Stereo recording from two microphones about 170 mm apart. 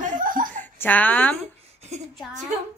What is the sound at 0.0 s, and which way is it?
Laughter, 50° right (ahead or behind).